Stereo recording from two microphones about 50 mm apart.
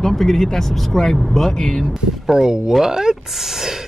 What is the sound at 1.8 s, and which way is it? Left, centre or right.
Speech, centre.